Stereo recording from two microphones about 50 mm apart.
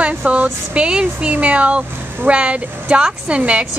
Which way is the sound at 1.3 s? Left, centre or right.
Right.